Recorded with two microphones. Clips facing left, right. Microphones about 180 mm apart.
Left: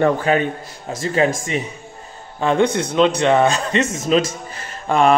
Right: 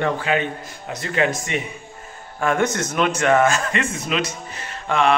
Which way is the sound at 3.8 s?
40° left (ahead or behind).